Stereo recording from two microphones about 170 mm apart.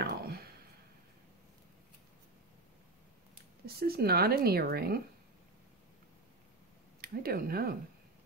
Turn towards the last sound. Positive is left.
turn(degrees=-60)  # may be behind; listen again after turning